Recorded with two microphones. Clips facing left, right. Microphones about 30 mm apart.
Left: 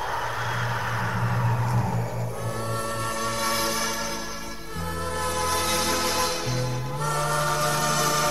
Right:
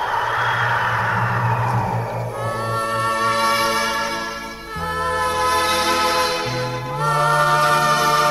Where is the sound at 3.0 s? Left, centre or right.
Right.